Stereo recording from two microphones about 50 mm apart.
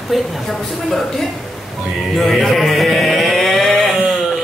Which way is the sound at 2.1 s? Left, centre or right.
Centre.